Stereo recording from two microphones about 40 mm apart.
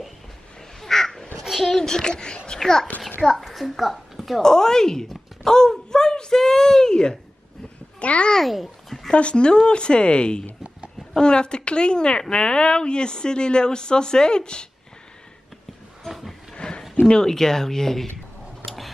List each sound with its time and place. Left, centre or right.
0.7 s duck: centre
1.4 s a sound: centre
1.7 s speech: centre
2.6 s a woman's voice: centre
4.4 s speech: centre
8.0 s a child's voice: left
8.5 s babbling: centre
9.1 s speech: left
16.1 s a sound: centre
16.5 s a sound: left
16.9 s speech: left